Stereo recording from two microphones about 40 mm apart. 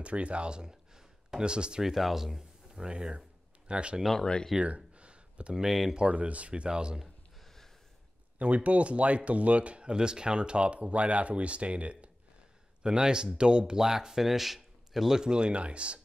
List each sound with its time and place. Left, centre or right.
0.0 s speech: right
1.8 s speech: centre
2.7 s speech: centre
4.6 s a sound: right
5.9 s a man's voice: right
7.4 s a sound: centre
8.4 s speech: right
12.8 s a man's voice: right